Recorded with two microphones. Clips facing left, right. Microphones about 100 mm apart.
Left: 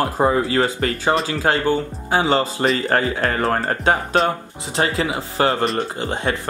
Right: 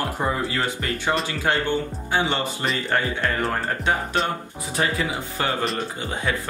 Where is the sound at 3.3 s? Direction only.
35° left (ahead or behind).